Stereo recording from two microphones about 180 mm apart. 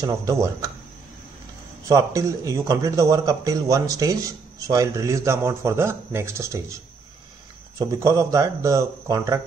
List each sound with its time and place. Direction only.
0.0 s speech: 20° right (ahead or behind)
1.9 s a man's voice: 20° right (ahead or behind)
7.8 s a man's voice: 20° right (ahead or behind)